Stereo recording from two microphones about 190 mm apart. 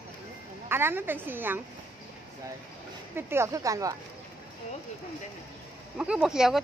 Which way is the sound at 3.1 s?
15° right (ahead or behind).